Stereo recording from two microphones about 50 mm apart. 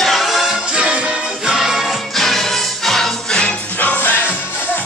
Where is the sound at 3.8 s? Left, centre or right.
Left.